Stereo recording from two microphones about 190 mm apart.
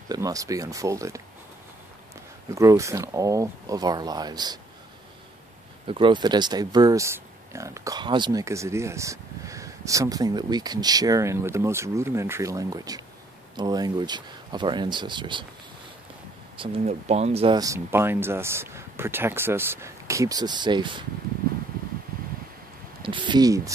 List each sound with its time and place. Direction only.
0.1 s speech: 20° right (ahead or behind)
2.5 s speech: 15° right (ahead or behind)
5.9 s speech: 25° right (ahead or behind)
16.5 s speech: 30° right (ahead or behind)
17.6 s speech: 15° right (ahead or behind)
23.0 s speech: 25° right (ahead or behind)